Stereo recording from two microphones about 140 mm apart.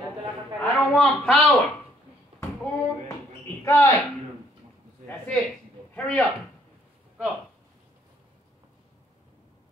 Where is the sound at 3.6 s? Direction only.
20° left (ahead or behind).